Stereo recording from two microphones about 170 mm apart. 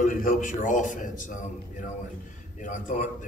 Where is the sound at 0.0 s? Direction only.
50° left (ahead or behind).